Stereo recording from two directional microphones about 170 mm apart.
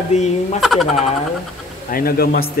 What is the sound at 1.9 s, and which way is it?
Speech, 60° left (ahead or behind).